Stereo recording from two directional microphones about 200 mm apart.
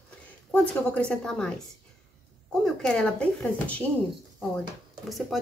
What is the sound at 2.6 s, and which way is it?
Speech, 5° left (ahead or behind).